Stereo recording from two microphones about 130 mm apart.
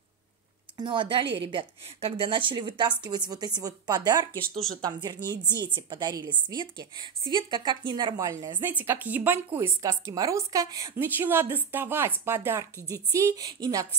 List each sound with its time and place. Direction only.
0.7 s a woman's voice: 40° right (ahead or behind)
11.0 s a woman's voice: 15° right (ahead or behind)